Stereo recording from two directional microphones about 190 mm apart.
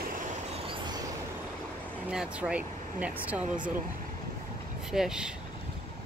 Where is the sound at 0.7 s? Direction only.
20° right (ahead or behind).